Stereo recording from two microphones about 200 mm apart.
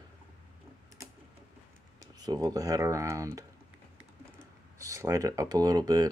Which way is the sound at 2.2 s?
20° right (ahead or behind).